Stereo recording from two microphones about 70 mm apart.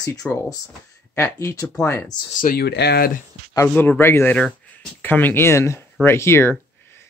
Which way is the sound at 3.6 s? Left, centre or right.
Left.